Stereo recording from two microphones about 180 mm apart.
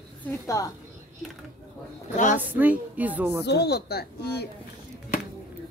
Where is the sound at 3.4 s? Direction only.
65° left (ahead or behind).